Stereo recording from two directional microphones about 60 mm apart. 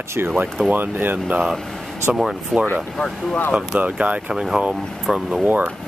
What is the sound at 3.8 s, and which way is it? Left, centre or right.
Speech, right.